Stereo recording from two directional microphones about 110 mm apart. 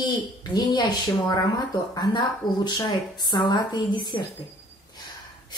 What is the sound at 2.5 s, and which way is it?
Speech, 40° left (ahead or behind).